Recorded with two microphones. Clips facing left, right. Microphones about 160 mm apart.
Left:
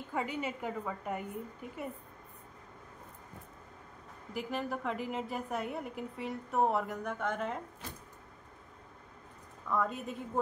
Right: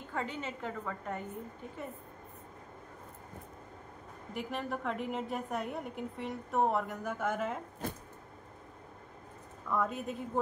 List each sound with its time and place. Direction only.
0.1 s a woman's voice: 10° left (ahead or behind)
4.3 s a woman's voice: centre (ahead or behind)
7.8 s a sound: 50° right (ahead or behind)
9.7 s a woman's voice: centre (ahead or behind)